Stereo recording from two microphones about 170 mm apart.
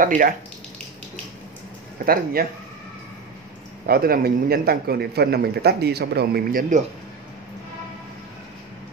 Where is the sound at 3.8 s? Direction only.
60° right (ahead or behind).